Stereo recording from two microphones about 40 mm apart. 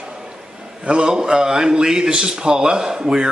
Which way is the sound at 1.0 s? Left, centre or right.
Centre.